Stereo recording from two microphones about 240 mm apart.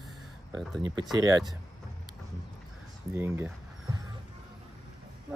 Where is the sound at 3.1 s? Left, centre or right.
Centre.